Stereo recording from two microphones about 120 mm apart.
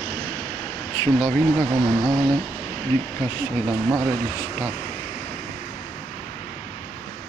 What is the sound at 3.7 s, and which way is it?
Speech, 20° right (ahead or behind).